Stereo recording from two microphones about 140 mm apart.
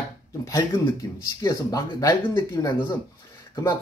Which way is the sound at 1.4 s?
25° left (ahead or behind).